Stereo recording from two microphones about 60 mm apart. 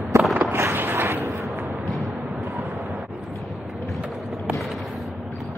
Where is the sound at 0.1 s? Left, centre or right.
Right.